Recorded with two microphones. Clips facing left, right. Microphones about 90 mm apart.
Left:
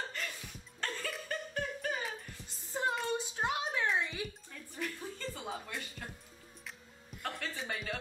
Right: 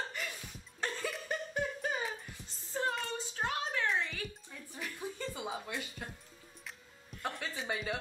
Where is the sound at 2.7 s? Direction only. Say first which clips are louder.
Even; 15° left (ahead or behind).